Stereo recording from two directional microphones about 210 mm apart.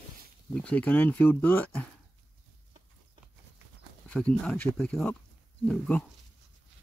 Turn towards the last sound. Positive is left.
turn(degrees=5)  # may be behind; listen again after turning